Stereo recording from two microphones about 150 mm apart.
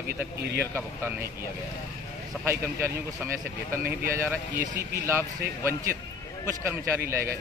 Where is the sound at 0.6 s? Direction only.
15° right (ahead or behind).